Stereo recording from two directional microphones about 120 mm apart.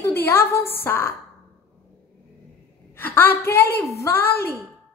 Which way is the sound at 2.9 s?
15° left (ahead or behind).